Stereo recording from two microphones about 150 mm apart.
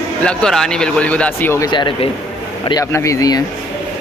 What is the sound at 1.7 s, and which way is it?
Speech, 30° left (ahead or behind).